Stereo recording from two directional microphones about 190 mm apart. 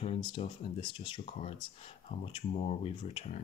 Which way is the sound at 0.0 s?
30° left (ahead or behind).